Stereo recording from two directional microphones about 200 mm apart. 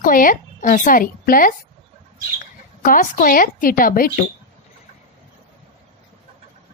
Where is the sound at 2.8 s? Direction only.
45° left (ahead or behind).